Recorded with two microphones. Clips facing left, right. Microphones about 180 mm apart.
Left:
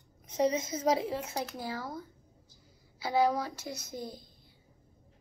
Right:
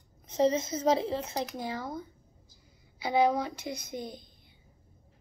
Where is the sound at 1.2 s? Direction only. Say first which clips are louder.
Right 2 dB; 10° left (ahead or behind).